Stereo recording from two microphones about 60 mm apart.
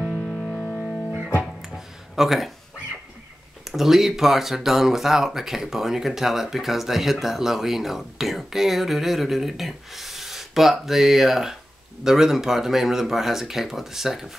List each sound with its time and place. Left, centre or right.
0.1 s music: left
2.1 s speech: centre
3.6 s speech: centre